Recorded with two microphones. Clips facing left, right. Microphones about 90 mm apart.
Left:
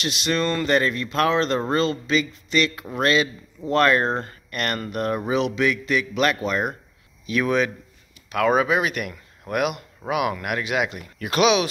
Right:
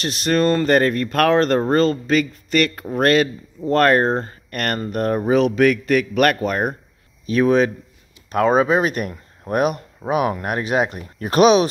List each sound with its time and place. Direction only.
0.0 s speech: 40° right (ahead or behind)
7.2 s speech: 35° right (ahead or behind)